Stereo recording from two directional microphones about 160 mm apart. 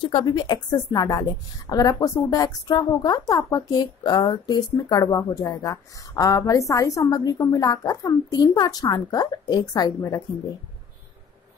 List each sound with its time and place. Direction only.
0.0 s speech: 30° left (ahead or behind)